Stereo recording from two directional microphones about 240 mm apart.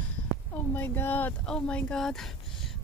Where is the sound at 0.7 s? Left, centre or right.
Centre.